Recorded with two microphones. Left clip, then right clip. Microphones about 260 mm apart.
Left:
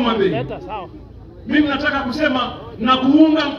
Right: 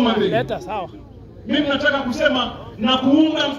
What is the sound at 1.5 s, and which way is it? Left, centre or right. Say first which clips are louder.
A man's voice: left 1 dB; centre.